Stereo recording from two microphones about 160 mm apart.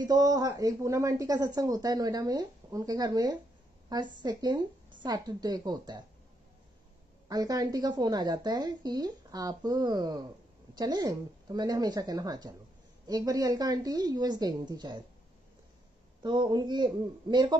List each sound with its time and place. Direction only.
0.0 s speech: 25° right (ahead or behind)
7.2 s speech: 25° right (ahead or behind)
16.2 s speech: 25° right (ahead or behind)